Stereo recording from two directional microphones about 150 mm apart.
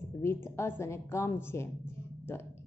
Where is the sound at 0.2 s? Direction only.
15° left (ahead or behind).